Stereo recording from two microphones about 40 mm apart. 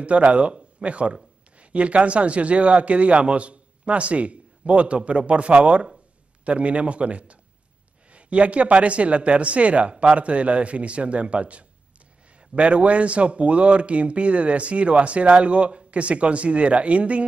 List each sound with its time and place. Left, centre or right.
0.0 s speech: right